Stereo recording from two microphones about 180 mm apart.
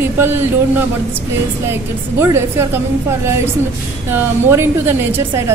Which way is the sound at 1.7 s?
15° right (ahead or behind).